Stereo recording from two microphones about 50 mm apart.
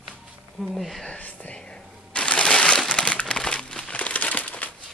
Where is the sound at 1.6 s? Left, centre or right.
Left.